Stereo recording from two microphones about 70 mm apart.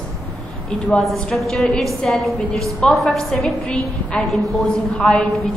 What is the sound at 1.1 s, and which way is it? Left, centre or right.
A woman's voice, centre.